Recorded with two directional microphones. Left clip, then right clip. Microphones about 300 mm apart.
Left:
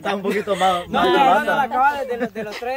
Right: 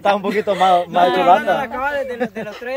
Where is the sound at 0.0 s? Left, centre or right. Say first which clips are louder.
Right 7 dB; right.